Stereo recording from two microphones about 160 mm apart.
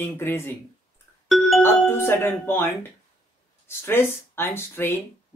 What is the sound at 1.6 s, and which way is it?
Speech, 15° left (ahead or behind).